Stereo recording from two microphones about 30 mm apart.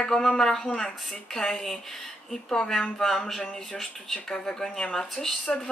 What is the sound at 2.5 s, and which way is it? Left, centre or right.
Speech, left.